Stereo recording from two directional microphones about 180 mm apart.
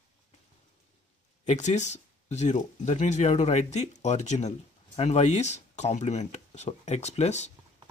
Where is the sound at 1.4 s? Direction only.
40° left (ahead or behind).